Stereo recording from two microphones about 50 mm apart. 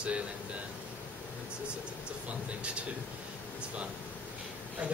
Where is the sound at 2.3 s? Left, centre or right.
Right.